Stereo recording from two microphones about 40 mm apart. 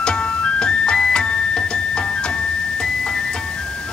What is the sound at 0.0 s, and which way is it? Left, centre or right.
Music, left.